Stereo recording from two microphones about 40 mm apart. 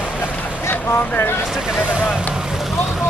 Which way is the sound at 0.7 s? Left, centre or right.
Left.